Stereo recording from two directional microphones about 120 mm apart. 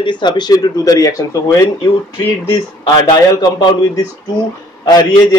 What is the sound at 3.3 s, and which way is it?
Speech, 35° left (ahead or behind).